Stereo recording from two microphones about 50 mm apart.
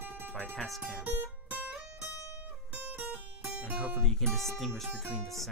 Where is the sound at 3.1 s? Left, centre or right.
Right.